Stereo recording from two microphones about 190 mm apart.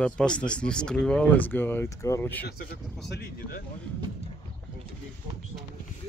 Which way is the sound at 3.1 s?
60° left (ahead or behind).